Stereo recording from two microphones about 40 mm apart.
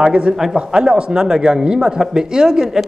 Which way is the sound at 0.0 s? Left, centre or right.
Right.